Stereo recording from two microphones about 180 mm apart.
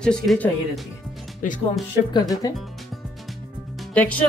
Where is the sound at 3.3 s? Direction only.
Centre (ahead or behind).